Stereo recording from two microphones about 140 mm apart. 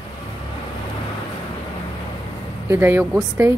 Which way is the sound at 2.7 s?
15° right (ahead or behind).